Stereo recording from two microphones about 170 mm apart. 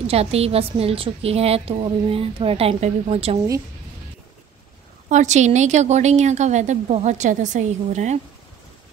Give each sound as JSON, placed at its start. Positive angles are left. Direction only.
{"t": 0.0, "sound": "a woman's voice", "side_deg": -35}
{"t": 5.1, "sound": "a woman's voice", "side_deg": -45}